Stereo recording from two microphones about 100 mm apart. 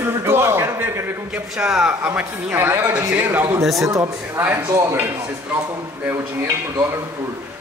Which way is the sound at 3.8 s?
35° right (ahead or behind).